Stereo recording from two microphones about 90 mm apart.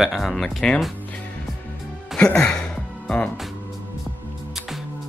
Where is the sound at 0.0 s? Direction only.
Centre (ahead or behind).